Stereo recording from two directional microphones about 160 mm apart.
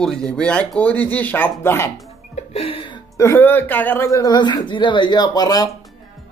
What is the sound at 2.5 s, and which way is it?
Speech, 35° left (ahead or behind).